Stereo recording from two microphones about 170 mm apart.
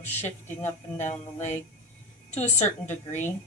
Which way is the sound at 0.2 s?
45° left (ahead or behind).